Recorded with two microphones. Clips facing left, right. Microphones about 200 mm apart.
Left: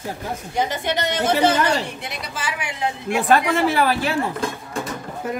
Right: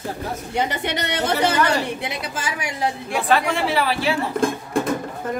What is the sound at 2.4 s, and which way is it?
Speech, 40° right (ahead or behind).